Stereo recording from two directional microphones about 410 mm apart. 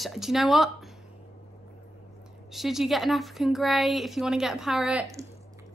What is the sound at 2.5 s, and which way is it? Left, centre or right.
Speech, centre.